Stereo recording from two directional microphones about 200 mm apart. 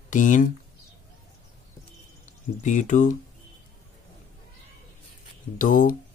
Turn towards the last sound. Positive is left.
turn(degrees=40)  # may be behind; listen again after turning